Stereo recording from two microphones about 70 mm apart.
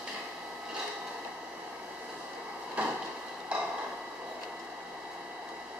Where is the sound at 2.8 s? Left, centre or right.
Centre.